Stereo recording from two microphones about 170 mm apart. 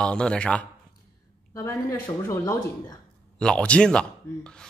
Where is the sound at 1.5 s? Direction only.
15° left (ahead or behind).